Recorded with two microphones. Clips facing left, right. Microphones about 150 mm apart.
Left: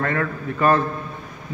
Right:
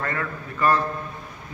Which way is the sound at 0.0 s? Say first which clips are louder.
Left 5 dB; 60° left (ahead or behind).